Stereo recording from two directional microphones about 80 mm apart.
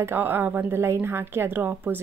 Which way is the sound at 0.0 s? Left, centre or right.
Right.